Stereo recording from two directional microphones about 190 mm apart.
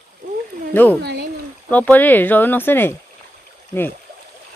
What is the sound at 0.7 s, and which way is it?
Speech, 10° left (ahead or behind).